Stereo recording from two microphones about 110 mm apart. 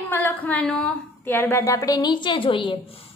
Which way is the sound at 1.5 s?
30° left (ahead or behind).